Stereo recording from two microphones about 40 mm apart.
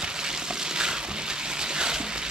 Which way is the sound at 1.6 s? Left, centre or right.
Centre.